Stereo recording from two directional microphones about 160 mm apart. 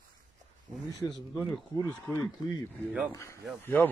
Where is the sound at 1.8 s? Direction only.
20° left (ahead or behind).